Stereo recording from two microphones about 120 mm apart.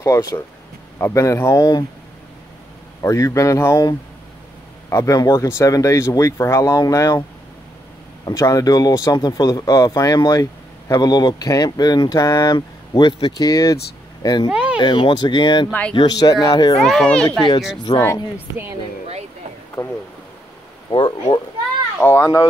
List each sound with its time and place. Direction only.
0.0 s speech: 30° left (ahead or behind)
3.0 s speech: 25° left (ahead or behind)
8.3 s speech: 30° left (ahead or behind)
14.5 s a sound: 10° right (ahead or behind)
14.8 s speech: 45° left (ahead or behind)
16.8 s speech: 5° left (ahead or behind)
17.9 s speech: 35° left (ahead or behind)
19.8 s speech: 10° left (ahead or behind)
20.9 s speech: 45° left (ahead or behind)
22.0 s speech: 25° left (ahead or behind)